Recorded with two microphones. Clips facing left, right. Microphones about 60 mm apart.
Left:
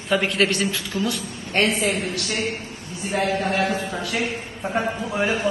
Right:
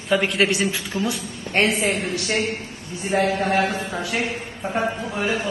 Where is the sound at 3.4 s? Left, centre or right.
Right.